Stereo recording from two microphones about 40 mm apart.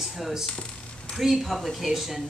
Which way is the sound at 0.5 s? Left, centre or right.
Left.